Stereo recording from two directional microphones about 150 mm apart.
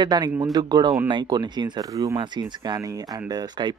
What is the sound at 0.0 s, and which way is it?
Speech, 30° right (ahead or behind).